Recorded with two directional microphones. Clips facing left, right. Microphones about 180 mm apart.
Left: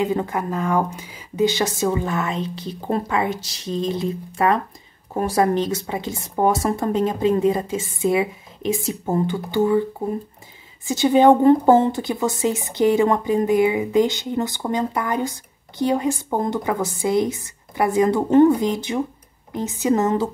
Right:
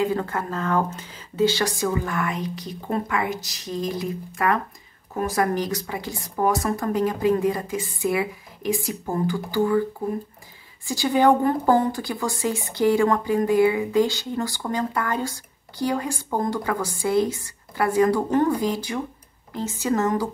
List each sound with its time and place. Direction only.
0.0 s a woman's voice: 20° left (ahead or behind)